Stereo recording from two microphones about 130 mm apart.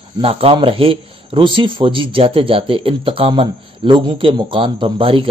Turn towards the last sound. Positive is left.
turn(degrees=-45)  # may be behind; listen again after turning